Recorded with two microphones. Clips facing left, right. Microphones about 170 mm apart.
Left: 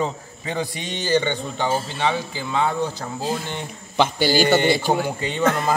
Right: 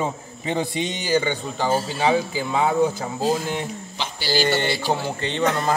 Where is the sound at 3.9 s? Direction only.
55° left (ahead or behind).